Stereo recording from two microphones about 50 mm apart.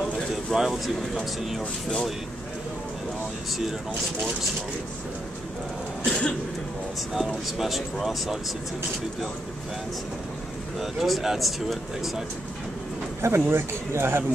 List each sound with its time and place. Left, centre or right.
0.3 s a sound: centre
6.0 s speech: centre
7.2 s speech: centre
10.8 s speech: centre
13.2 s speech: right